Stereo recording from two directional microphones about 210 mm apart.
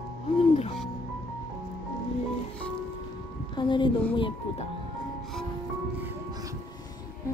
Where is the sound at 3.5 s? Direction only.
20° left (ahead or behind).